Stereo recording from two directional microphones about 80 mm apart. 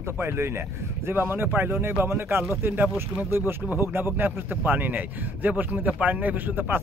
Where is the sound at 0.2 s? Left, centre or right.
Right.